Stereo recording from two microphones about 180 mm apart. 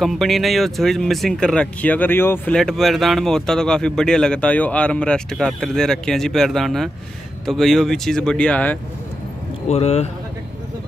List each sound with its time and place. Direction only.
0.0 s speech: centre (ahead or behind)
9.7 s speech: 35° left (ahead or behind)